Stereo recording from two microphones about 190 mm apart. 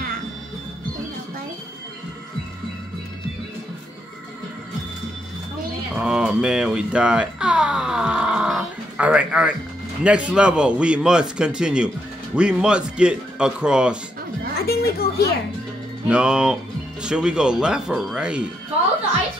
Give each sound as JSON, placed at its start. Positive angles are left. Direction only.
{"t": 5.9, "sound": "speech", "side_deg": -5}
{"t": 14.7, "sound": "a sound", "side_deg": 55}
{"t": 16.1, "sound": "speech", "side_deg": -5}